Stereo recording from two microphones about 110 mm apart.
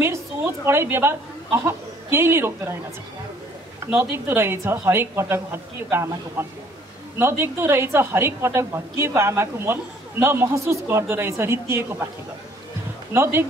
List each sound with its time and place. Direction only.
0.7 s a woman's voice: 20° right (ahead or behind)
3.8 s a man's voice: 20° right (ahead or behind)
13.1 s a man's voice: 20° right (ahead or behind)